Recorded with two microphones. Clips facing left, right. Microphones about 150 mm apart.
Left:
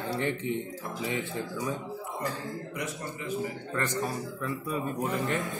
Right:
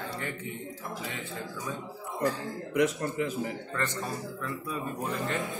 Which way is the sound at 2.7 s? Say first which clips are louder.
Right 9 dB; 90° right.